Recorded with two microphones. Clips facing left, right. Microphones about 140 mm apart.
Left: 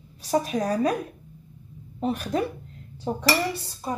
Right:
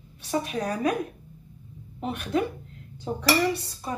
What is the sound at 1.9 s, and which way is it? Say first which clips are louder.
Speech: left 1 dB; 35° left (ahead or behind).